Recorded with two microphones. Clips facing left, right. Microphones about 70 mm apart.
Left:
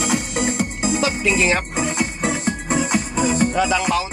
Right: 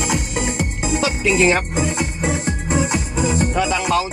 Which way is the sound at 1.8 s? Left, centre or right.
Centre.